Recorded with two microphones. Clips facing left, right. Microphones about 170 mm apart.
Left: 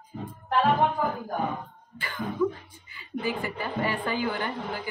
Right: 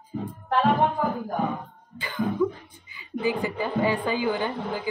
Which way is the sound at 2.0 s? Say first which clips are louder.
Right 5 dB; 15° right (ahead or behind).